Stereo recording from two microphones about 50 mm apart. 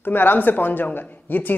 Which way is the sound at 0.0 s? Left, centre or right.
Left.